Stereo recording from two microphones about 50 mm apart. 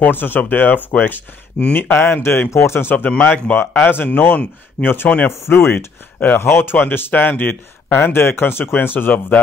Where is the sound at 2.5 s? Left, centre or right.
Left.